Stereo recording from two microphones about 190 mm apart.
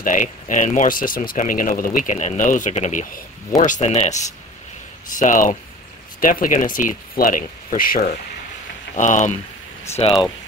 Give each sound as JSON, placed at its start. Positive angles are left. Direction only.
{"t": 0.0, "sound": "speech", "side_deg": 45}
{"t": 5.2, "sound": "speech", "side_deg": 45}
{"t": 10.0, "sound": "speech", "side_deg": 30}